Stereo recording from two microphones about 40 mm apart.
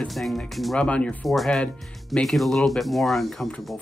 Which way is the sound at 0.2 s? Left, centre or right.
Centre.